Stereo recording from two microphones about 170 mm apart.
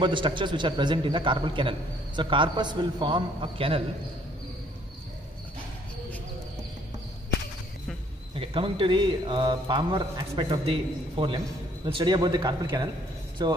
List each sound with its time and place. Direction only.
0.0 s a man's voice: 30° right (ahead or behind)
8.4 s a man's voice: 30° right (ahead or behind)